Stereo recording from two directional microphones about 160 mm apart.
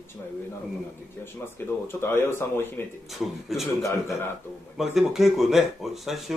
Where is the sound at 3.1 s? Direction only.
Centre (ahead or behind).